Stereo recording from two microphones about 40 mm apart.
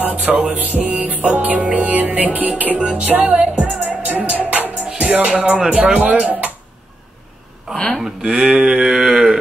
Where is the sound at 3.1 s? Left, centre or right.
Right.